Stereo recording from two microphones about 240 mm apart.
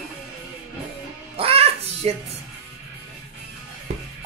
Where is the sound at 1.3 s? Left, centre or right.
Right.